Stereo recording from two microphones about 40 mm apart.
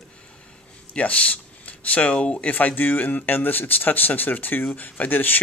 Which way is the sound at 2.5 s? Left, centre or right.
Left.